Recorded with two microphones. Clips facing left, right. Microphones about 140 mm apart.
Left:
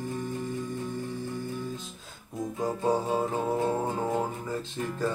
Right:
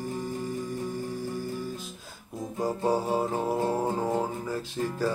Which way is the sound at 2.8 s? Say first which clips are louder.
Even; 5° right (ahead or behind).